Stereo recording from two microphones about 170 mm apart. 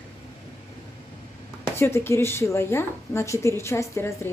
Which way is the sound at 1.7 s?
15° left (ahead or behind).